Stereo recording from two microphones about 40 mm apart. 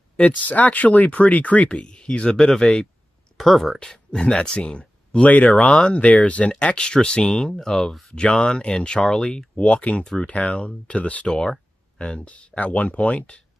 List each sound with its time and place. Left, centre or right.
0.5 s speech: left
1.7 s speech: left
3.3 s speech: centre
3.8 s speech: centre
6.6 s speech: left
11.2 s speech: centre
12.0 s speech: left